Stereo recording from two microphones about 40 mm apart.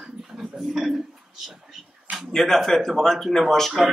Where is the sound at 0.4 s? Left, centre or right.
Centre.